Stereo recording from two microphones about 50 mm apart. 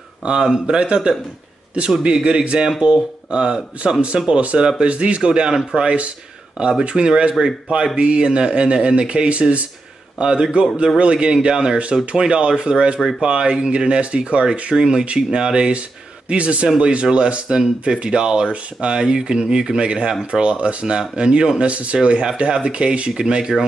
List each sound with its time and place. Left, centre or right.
0.2 s speech: centre
10.1 s speech: centre
11.8 s speech: right
16.6 s speech: centre